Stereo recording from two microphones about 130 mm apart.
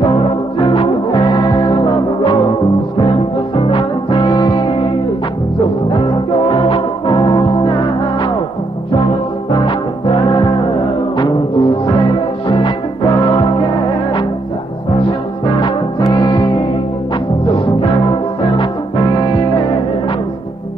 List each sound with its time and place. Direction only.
0.6 s music: 40° left (ahead or behind)
5.9 s music: 40° left (ahead or behind)
9.5 s music: 40° left (ahead or behind)
16.1 s music: 35° left (ahead or behind)